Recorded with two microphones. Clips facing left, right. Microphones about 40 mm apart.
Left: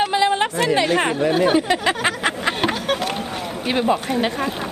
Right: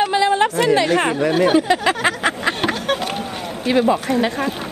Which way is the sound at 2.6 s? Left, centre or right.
Centre.